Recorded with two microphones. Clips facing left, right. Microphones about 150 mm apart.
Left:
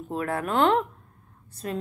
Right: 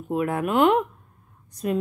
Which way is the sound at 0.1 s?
15° right (ahead or behind).